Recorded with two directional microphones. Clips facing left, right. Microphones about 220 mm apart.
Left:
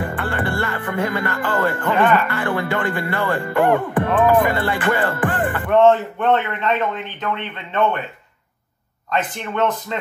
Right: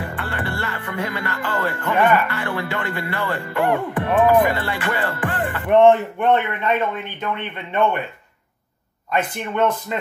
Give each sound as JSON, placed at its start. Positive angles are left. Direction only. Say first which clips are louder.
{"t": 0.1, "sound": "speech", "louder": "left 4 dB", "side_deg": 50}
{"t": 5.7, "sound": "a man's voice", "louder": "right 1 dB", "side_deg": -15}
{"t": 9.1, "sound": "a man's voice", "louder": "even", "side_deg": -10}